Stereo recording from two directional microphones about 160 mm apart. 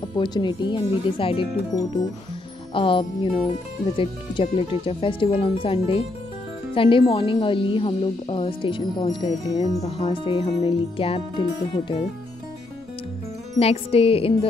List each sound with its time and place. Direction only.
0.1 s speech: 30° left (ahead or behind)
2.7 s speech: 35° left (ahead or behind)
13.6 s speech: 40° left (ahead or behind)